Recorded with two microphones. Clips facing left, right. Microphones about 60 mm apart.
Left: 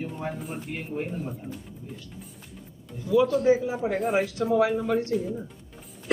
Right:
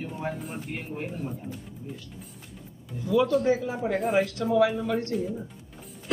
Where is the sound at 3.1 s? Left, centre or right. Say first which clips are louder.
Left 2 dB; centre.